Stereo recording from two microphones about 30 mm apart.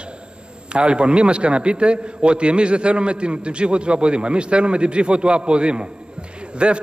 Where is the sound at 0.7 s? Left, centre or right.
Right.